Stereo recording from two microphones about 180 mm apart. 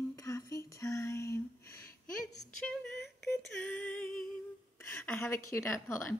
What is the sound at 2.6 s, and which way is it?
Female singing, 5° left (ahead or behind).